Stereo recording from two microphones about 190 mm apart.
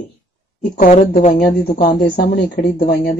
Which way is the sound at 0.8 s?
45° left (ahead or behind).